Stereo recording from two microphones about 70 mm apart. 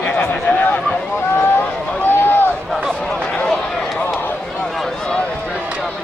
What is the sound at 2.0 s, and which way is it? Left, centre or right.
Run, left.